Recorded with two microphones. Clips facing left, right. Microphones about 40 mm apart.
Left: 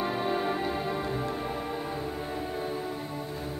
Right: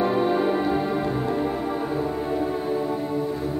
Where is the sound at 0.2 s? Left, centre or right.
Centre.